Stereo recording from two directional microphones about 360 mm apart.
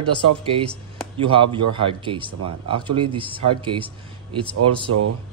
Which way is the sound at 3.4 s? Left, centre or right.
Right.